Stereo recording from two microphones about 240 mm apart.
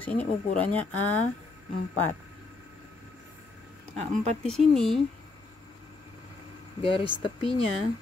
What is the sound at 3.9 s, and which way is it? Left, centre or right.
Speech, right.